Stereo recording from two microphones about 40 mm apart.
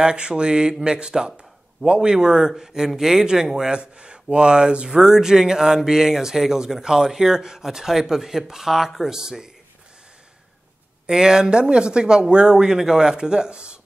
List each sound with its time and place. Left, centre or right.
0.0 s speech: right
3.7 s speech: right
11.1 s speech: centre